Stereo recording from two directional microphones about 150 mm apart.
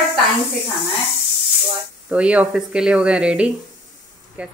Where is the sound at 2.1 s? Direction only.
10° right (ahead or behind).